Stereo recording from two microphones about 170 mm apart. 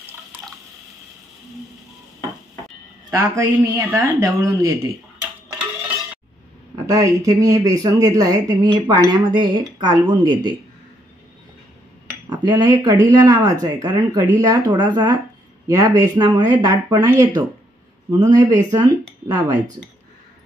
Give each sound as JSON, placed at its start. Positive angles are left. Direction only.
{"t": 3.1, "sound": "speech", "side_deg": -20}
{"t": 6.7, "sound": "speech", "side_deg": -20}
{"t": 12.3, "sound": "cutlery", "side_deg": -25}
{"t": 13.0, "sound": "speech", "side_deg": -20}